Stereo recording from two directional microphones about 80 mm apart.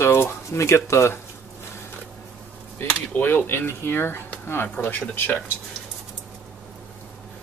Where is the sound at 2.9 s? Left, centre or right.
Left.